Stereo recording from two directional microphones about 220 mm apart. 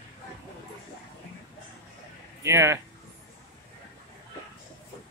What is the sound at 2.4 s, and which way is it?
Speech, 10° right (ahead or behind).